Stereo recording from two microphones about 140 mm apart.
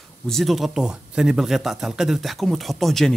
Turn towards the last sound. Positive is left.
turn(degrees=0)  # may be behind; listen again after turning